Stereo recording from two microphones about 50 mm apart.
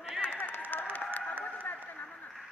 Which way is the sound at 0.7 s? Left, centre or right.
Left.